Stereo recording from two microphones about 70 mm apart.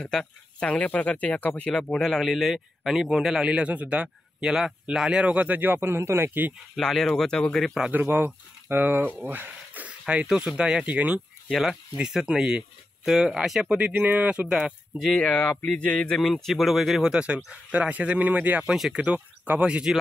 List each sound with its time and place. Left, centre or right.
0.0 s speech: centre; by 6.5 s right
6.8 s speech: centre
7.6 s speech: centre
7.9 s speech: right
11.4 s speech: centre; by 14.5 s right
14.5 s speech: centre
15.1 s speech: centre
16.2 s speech: centre
17.1 s speech: centre
18.6 s speech: centre
18.9 s speech: right
19.6 s speech: centre